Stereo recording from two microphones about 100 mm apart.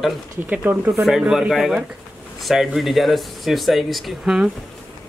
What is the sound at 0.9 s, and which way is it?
Speech, centre (ahead or behind).